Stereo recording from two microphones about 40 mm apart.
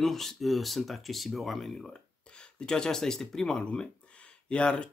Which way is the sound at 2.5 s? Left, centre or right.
Left.